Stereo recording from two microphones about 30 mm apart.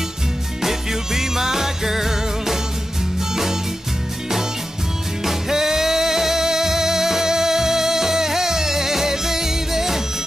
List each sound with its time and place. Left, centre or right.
0.6 s music: centre
5.2 s music: centre